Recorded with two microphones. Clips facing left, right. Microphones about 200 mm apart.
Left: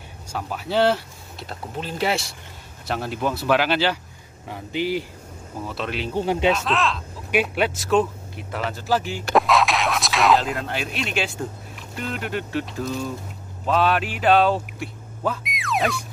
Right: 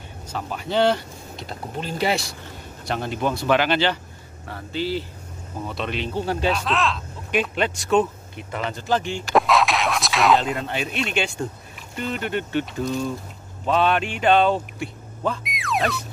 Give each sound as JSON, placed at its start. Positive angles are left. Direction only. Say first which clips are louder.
{"t": 0.3, "sound": "speech", "louder": "even", "side_deg": 5}
{"t": 5.7, "sound": "speech", "louder": "right 1 dB", "side_deg": 5}
{"t": 6.1, "sound": "speech", "louder": "left 4 dB", "side_deg": 15}
{"t": 6.5, "sound": "speech", "louder": "left 1 dB", "side_deg": 0}